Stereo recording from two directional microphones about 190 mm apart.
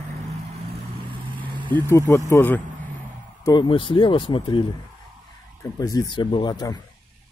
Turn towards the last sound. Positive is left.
turn(degrees=20)  # may be behind; listen again after turning